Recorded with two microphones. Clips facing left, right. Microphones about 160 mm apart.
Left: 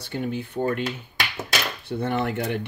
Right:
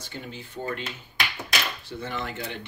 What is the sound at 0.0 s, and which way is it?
Speech, 55° left (ahead or behind).